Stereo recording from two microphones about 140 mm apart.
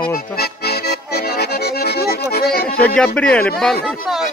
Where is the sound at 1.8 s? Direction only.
90° left.